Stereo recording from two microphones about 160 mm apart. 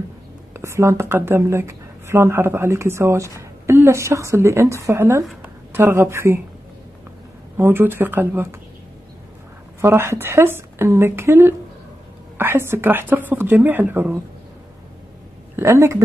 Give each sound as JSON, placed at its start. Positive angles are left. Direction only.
{"t": 0.5, "sound": "a woman's voice", "side_deg": -15}
{"t": 7.5, "sound": "a woman's voice", "side_deg": -15}
{"t": 9.8, "sound": "a woman's voice", "side_deg": -15}
{"t": 15.5, "sound": "speech", "side_deg": -20}